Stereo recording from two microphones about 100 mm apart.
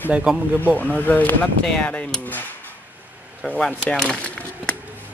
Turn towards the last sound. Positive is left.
turn(degrees=10)  # may be behind; listen again after turning